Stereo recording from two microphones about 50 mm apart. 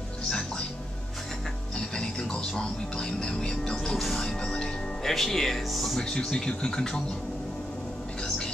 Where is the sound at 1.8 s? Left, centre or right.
Centre.